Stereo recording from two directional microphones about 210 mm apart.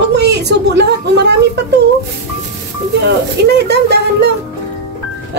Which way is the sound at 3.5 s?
55° right (ahead or behind).